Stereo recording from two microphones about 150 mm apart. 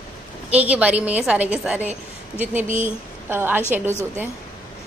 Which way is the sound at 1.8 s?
50° right (ahead or behind).